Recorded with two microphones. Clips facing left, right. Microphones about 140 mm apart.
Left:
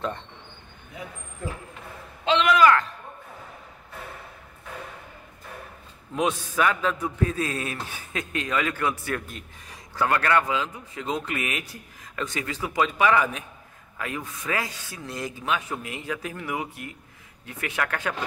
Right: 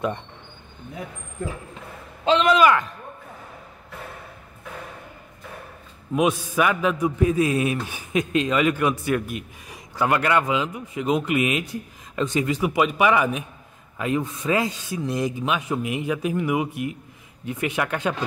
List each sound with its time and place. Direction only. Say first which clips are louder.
2.2 s speech: right 3 dB; 40° right (ahead or behind)
2.5 s a man's voice: left 2 dB; 15° right (ahead or behind)
6.1 s a man's voice: right 4 dB; 10° right (ahead or behind)